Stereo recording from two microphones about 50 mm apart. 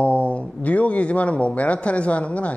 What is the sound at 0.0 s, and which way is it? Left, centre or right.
Speech, left.